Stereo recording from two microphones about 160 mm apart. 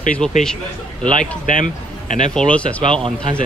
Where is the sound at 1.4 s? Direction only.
55° left (ahead or behind).